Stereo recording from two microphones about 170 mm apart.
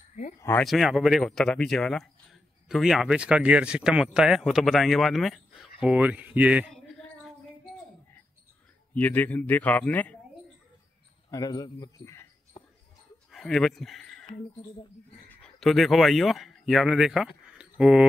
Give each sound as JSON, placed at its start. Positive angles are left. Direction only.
{"t": 0.4, "sound": "a man's voice", "side_deg": 10}
{"t": 0.7, "sound": "speech", "side_deg": 0}
{"t": 8.9, "sound": "a man's voice", "side_deg": 10}
{"t": 11.2, "sound": "speech", "side_deg": 20}
{"t": 13.3, "sound": "speech", "side_deg": 0}
{"t": 15.2, "sound": "speech", "side_deg": 5}